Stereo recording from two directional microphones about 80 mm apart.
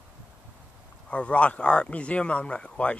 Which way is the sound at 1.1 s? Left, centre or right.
Centre.